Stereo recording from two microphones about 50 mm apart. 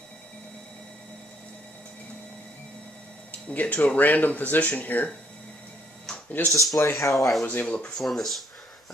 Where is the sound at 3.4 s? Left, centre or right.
Left.